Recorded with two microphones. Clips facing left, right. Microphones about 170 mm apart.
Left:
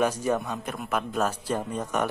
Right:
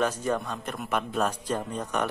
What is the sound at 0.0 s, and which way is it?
A man's voice, 10° left (ahead or behind).